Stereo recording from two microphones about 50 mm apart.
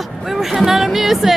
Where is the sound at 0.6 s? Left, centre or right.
Centre.